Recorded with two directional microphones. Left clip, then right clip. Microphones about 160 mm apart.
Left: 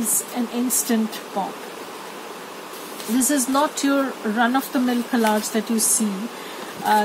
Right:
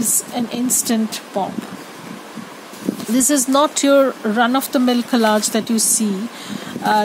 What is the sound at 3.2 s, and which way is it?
Speech, 90° right.